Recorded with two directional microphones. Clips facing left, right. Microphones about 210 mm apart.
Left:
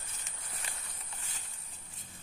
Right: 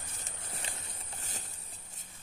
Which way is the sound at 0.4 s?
25° right (ahead or behind).